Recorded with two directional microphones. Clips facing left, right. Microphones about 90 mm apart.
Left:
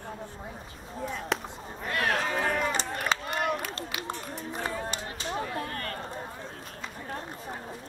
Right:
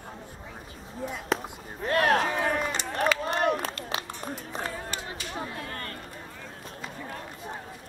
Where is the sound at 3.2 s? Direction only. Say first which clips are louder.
Right 4 dB; 30° right (ahead or behind).